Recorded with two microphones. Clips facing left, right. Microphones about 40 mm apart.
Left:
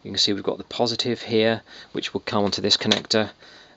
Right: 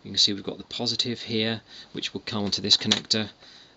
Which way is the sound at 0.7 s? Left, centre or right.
Left.